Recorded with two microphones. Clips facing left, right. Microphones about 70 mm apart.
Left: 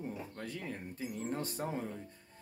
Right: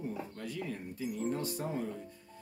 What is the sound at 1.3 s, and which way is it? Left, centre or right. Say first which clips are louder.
Speech: right 2 dB; left.